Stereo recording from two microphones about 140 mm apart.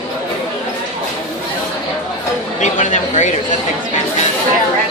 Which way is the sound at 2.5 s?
60° left (ahead or behind).